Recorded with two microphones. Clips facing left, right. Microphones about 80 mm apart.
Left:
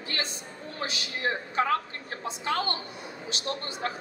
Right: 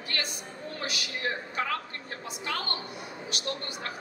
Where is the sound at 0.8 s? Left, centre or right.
Left.